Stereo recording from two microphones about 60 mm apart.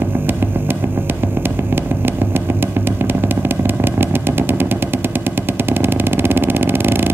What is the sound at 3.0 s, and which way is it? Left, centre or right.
Vehicle, right.